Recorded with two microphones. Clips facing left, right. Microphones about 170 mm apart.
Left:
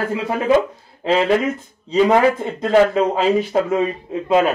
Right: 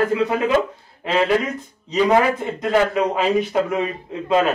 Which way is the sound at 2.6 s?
30° left (ahead or behind).